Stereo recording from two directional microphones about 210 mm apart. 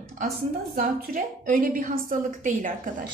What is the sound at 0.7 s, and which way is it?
A woman's voice, 40° right (ahead or behind).